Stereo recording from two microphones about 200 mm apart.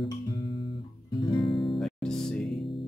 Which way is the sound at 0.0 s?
25° left (ahead or behind).